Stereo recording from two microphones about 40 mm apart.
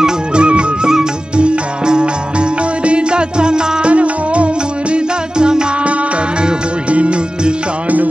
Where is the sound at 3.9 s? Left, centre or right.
Right.